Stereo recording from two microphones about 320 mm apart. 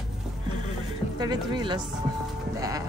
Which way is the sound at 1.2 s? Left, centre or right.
Centre.